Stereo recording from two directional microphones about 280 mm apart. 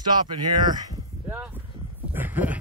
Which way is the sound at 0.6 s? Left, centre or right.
Centre.